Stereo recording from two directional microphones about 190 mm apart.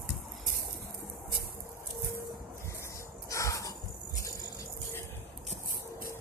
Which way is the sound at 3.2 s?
15° left (ahead or behind).